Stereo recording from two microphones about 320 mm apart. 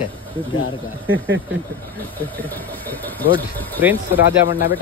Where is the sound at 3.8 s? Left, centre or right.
Centre.